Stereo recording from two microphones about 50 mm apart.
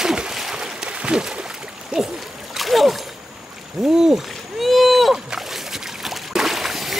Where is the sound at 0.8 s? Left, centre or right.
Right.